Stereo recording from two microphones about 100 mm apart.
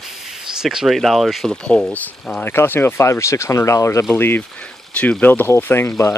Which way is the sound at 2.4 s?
20° left (ahead or behind).